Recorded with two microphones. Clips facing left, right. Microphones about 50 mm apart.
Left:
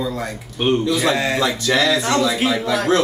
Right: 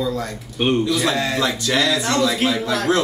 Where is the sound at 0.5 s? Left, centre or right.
Centre.